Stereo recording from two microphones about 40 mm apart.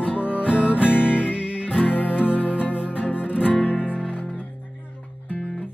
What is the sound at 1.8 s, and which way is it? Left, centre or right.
Music, left.